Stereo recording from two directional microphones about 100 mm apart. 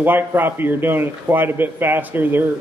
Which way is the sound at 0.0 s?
20° right (ahead or behind).